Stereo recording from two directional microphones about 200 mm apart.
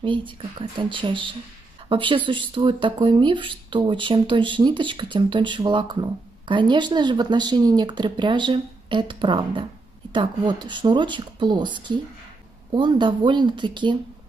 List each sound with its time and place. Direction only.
0.0 s speech: 25° right (ahead or behind)